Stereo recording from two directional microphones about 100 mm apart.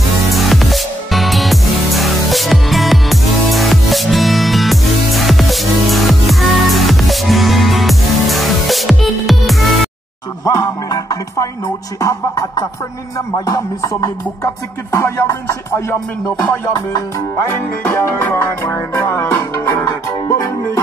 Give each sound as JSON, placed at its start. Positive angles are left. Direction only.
{"t": 0.3, "sound": "music", "side_deg": 0}
{"t": 10.4, "sound": "music", "side_deg": 35}
{"t": 17.8, "sound": "music", "side_deg": 25}